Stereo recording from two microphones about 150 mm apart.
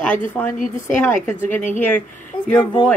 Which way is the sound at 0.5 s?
60° left (ahead or behind).